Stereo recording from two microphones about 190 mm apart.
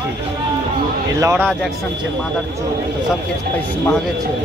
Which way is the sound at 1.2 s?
10° right (ahead or behind).